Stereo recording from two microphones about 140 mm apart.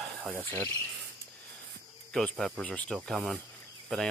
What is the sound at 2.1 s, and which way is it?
Speech, 5° left (ahead or behind).